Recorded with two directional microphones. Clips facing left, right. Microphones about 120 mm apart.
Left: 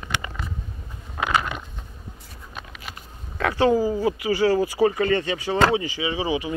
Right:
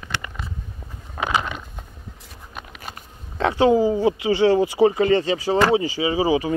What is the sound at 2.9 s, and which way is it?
Speech, 25° right (ahead or behind).